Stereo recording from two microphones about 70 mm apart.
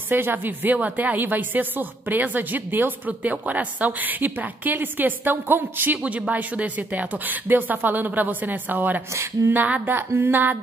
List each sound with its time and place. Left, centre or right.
0.1 s speech: right
9.1 s speech: right
9.5 s speech: right